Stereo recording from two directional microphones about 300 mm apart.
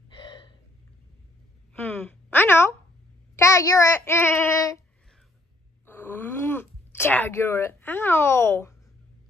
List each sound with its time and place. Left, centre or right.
0.1 s gasp: centre
1.7 s a sound: centre
3.3 s child singing: centre
5.9 s groan: centre